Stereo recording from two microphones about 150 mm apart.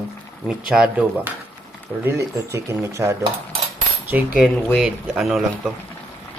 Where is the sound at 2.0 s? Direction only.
20° right (ahead or behind).